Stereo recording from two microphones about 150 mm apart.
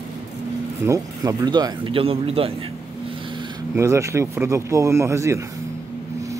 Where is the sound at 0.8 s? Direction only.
20° right (ahead or behind); by 2.5 s 40° right (ahead or behind).